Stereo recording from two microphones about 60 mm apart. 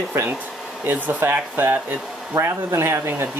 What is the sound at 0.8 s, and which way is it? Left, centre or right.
Speech, right.